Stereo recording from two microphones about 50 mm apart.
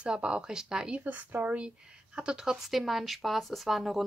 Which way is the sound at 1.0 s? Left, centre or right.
Right.